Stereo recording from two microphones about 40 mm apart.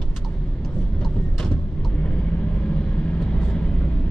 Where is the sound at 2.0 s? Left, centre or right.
Left.